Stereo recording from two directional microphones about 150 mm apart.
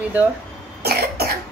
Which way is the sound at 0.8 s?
90° right.